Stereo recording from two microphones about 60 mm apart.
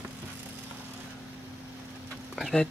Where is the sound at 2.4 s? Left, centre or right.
Centre.